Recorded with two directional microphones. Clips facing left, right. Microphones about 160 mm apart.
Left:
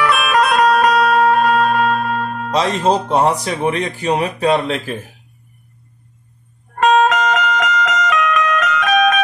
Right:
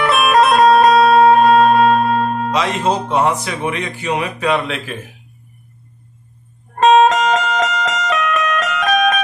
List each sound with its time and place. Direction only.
0.0 s music: 30° right (ahead or behind)
2.5 s speech: 35° left (ahead or behind)
6.7 s music: 25° right (ahead or behind)